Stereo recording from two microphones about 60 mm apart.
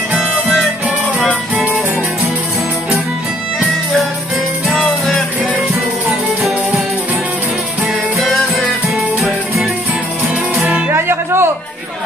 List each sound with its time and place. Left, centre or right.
8.8 s music: centre
10.9 s music: right